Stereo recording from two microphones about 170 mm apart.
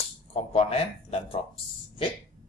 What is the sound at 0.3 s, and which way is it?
Speech, 35° left (ahead or behind).